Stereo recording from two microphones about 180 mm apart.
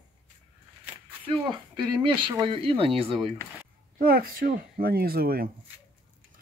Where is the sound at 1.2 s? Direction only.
25° right (ahead or behind).